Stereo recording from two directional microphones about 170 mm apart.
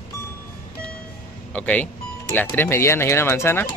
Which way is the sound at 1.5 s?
10° left (ahead or behind).